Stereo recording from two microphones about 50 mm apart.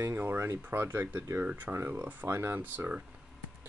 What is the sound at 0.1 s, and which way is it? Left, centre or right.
Speech, right.